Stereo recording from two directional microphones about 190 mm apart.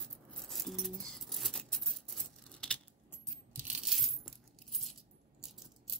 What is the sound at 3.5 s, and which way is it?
Coin, centre (ahead or behind).